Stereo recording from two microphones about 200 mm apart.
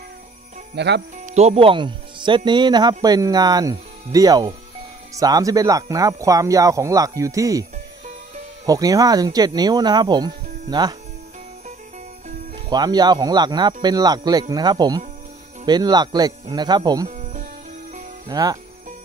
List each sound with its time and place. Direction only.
0.7 s speech: 60° right (ahead or behind)
1.1 s speech: 35° right (ahead or behind); by 7.6 s 15° right (ahead or behind)
8.6 s speech: 15° right (ahead or behind)
12.6 s speech: 20° right (ahead or behind)
17.1 s music: 40° right (ahead or behind)
18.3 s speech: 20° right (ahead or behind)